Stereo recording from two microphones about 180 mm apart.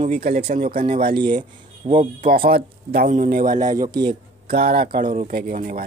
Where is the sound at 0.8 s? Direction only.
50° right (ahead or behind).